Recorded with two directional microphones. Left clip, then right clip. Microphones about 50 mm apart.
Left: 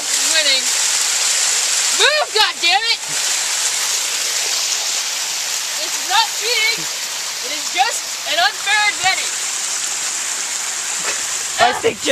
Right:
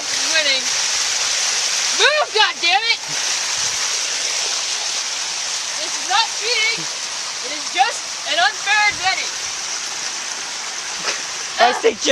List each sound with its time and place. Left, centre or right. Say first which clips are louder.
0.1 s a sound: left 1 dB; centre
0.4 s rain: left 2 dB; centre
0.7 s rain on surface: left 1 dB; centre
2.0 s speech: even; centre
6.0 s speech: left 2 dB; left
11.6 s speech: even; left